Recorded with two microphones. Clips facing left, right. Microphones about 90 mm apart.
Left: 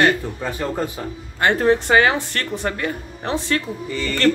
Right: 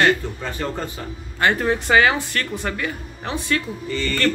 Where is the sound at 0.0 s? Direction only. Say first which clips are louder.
Left 1 dB; 15° left (ahead or behind).